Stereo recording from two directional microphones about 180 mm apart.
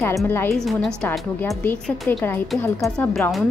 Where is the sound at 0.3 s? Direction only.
15° left (ahead or behind).